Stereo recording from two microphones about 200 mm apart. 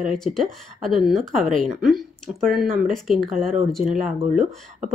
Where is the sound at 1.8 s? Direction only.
Centre (ahead or behind).